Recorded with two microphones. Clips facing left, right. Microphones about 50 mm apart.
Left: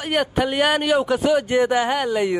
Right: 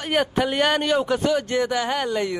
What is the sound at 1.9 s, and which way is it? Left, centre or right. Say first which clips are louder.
Speech: left 3 dB; centre.